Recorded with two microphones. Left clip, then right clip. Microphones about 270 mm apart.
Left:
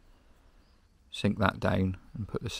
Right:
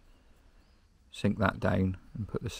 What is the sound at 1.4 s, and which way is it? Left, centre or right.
Speech, centre.